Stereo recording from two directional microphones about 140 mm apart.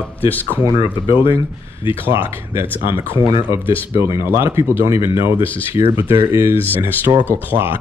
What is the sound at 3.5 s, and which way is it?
Speech, 20° right (ahead or behind).